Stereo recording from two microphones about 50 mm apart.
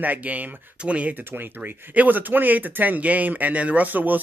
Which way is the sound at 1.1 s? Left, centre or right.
Right.